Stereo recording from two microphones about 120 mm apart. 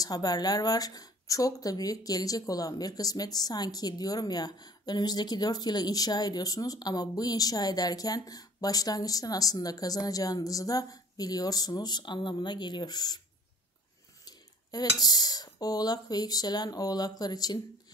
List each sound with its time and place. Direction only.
0.0 s speech: 30° left (ahead or behind)
14.2 s speech: 35° left (ahead or behind)